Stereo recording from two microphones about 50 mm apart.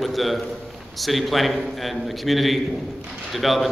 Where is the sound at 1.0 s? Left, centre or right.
Centre.